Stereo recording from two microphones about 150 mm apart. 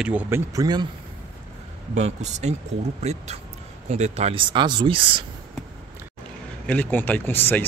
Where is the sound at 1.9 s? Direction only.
50° right (ahead or behind).